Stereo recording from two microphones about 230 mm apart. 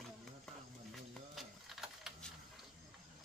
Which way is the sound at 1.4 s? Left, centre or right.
Centre.